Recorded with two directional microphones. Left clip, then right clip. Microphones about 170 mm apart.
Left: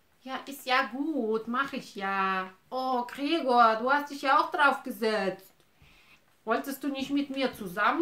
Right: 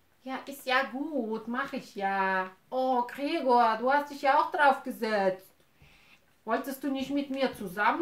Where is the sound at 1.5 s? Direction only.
45° left (ahead or behind).